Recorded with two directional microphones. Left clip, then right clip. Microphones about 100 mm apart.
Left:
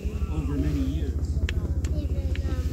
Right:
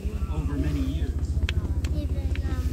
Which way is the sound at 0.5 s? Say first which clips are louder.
Left 1 dB; 20° right (ahead or behind).